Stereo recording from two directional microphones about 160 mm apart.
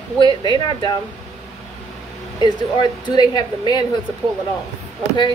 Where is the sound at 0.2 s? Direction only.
25° left (ahead or behind).